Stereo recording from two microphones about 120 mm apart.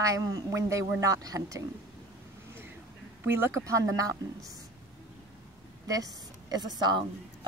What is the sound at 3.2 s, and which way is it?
Speech, 20° right (ahead or behind).